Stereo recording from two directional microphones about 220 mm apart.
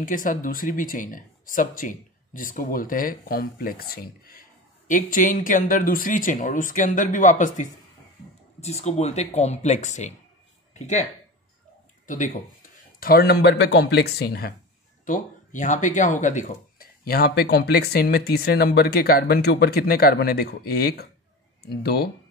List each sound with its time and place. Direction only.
0.0 s speech: 40° left (ahead or behind)
12.1 s speech: 35° left (ahead or behind)
15.0 s speech: 35° left (ahead or behind)